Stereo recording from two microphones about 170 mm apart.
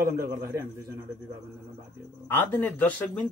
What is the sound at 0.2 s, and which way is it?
Speech, 15° right (ahead or behind).